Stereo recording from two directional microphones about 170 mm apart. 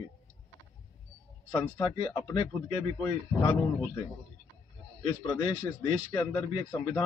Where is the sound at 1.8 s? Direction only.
25° left (ahead or behind).